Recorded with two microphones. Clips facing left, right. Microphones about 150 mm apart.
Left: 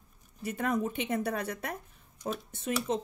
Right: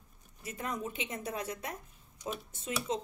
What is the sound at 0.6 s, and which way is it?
Speech, 65° left (ahead or behind).